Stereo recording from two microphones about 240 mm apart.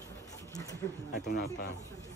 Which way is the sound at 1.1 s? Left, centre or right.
Left.